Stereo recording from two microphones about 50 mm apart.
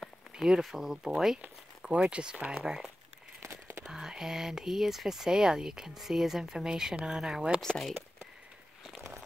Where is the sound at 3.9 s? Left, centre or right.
Centre.